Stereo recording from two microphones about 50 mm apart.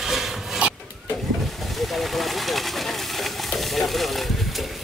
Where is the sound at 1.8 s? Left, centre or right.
Centre.